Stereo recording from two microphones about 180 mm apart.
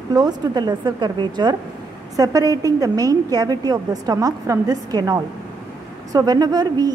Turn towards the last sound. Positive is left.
turn(degrees=-20)  # may be behind; listen again after turning